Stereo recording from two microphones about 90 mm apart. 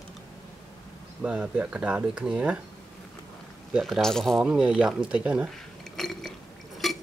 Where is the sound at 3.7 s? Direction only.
5° right (ahead or behind).